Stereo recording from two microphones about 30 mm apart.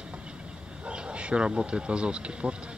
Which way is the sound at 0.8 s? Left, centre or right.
Right.